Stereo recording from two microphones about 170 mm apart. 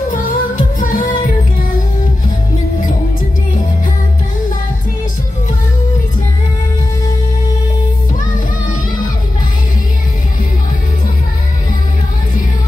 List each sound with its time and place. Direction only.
0.1 s music: 50° left (ahead or behind)